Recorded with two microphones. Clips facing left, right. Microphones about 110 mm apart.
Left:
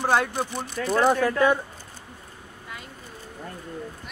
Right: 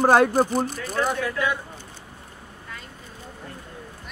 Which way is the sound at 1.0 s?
40° left (ahead or behind).